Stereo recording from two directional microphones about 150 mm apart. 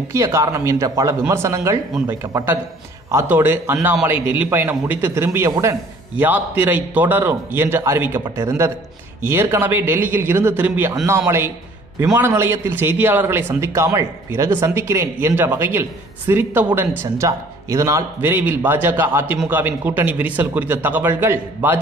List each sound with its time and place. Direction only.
0.1 s a man's voice: 20° right (ahead or behind)